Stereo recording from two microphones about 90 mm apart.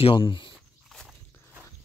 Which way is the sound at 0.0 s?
70° left (ahead or behind).